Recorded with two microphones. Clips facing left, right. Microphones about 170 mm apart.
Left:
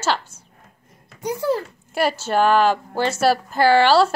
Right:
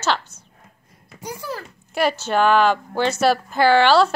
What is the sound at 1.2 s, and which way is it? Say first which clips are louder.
Speech: left 9 dB; 20° left (ahead or behind).